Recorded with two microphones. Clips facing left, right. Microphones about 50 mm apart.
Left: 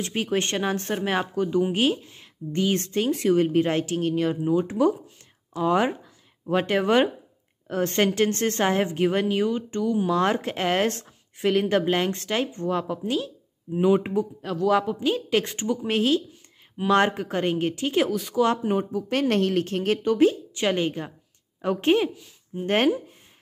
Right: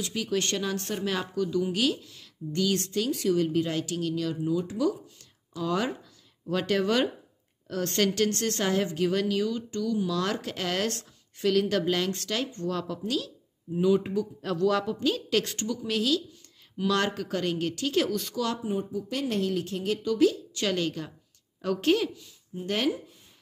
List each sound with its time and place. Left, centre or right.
0.0 s a woman's voice: left
13.7 s speech: left
14.4 s speech: centre
14.8 s a woman's voice: centre
18.6 s a woman's voice: left